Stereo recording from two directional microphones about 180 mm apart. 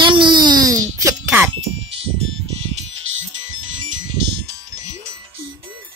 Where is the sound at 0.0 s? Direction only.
25° right (ahead or behind).